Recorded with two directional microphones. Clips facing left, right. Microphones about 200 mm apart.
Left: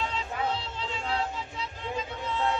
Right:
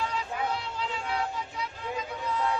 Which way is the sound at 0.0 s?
25° left (ahead or behind).